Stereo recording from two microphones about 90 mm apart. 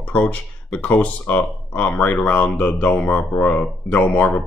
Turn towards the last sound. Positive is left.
turn(degrees=15)  # may be behind; listen again after turning